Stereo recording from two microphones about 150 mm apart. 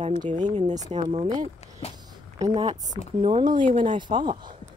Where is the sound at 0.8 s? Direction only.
30° right (ahead or behind).